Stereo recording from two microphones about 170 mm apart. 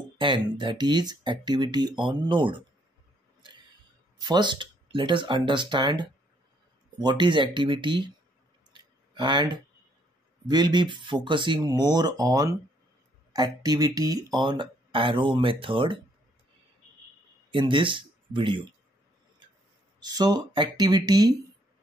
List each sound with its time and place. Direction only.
0.2 s speech: 30° right (ahead or behind)
4.2 s speech: 25° right (ahead or behind)
8.7 s a sound: 25° right (ahead or behind)
10.5 s speech: 25° right (ahead or behind)
17.5 s speech: 30° right (ahead or behind)
20.0 s speech: 25° right (ahead or behind)